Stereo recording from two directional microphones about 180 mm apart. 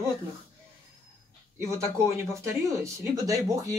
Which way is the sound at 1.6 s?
15° right (ahead or behind).